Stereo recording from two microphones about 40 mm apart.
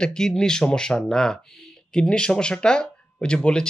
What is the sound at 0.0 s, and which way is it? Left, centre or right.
Speech, centre.